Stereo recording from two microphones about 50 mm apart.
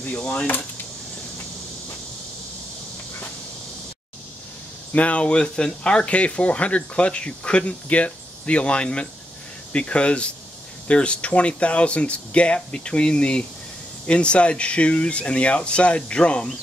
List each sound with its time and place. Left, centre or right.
0.1 s speech: left
4.9 s speech: left